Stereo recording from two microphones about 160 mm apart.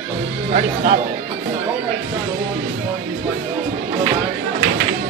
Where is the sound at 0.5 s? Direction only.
45° right (ahead or behind).